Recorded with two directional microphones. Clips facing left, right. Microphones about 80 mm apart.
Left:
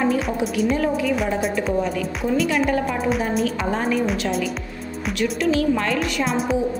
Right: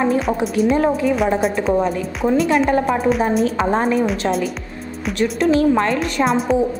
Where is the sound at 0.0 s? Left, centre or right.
Right.